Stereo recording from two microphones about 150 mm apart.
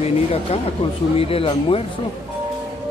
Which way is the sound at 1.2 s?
40° left (ahead or behind).